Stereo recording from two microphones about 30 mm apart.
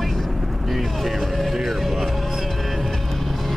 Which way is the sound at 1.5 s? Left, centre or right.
Centre.